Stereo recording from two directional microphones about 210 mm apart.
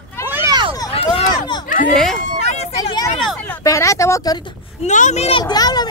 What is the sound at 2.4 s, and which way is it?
Vehicle, 30° left (ahead or behind).